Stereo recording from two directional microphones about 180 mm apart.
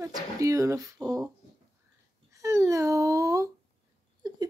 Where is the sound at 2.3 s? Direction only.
15° right (ahead or behind).